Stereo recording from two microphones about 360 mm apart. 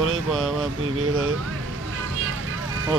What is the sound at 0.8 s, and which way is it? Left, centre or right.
Speech, right.